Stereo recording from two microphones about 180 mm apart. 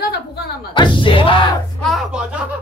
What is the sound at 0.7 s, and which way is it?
Speech, 25° left (ahead or behind).